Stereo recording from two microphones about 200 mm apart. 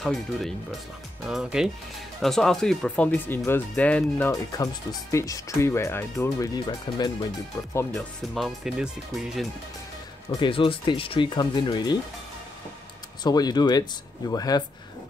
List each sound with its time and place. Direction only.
0.0 s speech: centre (ahead or behind); by 7.2 s 20° left (ahead or behind)
7.9 s speech: centre (ahead or behind)
10.4 s speech: 25° left (ahead or behind)
13.2 s speech: 20° left (ahead or behind)